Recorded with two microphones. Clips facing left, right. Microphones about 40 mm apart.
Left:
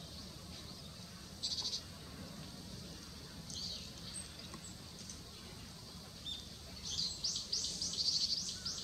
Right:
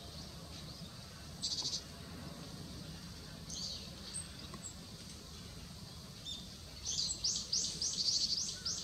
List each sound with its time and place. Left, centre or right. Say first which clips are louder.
1.4 s bleat: right 1 dB; centre
6.8 s bird: right 1 dB; centre